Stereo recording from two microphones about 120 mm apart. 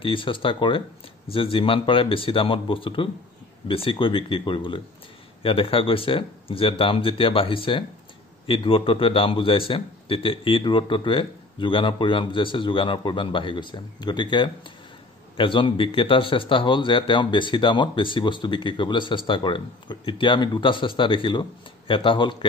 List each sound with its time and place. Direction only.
0.0 s a man's voice: 45° left (ahead or behind)